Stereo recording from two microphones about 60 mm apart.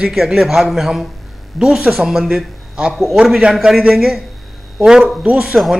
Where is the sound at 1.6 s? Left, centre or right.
Centre.